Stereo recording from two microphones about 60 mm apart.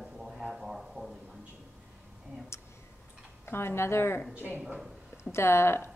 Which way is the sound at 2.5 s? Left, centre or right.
Left.